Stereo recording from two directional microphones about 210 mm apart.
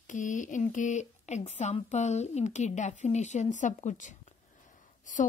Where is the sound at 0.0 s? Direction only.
40° left (ahead or behind).